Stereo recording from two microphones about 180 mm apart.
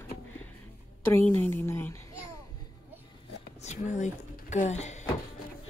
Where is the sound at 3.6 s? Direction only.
40° left (ahead or behind).